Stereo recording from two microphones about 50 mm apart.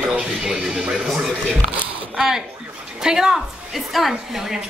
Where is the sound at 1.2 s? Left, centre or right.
Centre.